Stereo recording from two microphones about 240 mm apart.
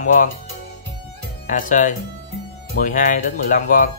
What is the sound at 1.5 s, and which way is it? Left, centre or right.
Speech, left.